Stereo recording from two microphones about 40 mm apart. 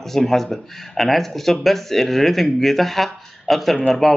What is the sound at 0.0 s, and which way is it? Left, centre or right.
Speech, centre.